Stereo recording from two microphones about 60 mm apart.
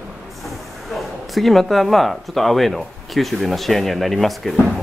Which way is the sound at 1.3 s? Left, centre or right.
Centre.